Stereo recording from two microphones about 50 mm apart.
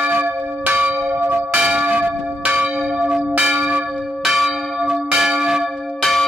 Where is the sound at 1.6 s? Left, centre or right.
Right.